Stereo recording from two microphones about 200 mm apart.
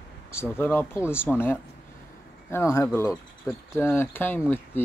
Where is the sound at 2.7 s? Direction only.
10° left (ahead or behind).